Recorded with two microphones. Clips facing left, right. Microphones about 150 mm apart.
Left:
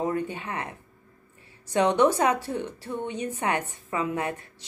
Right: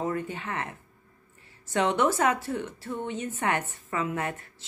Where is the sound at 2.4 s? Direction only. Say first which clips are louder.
Left 1 dB; 15° left (ahead or behind).